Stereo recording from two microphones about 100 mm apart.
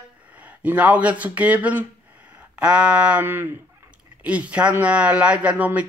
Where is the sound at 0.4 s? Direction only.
15° right (ahead or behind).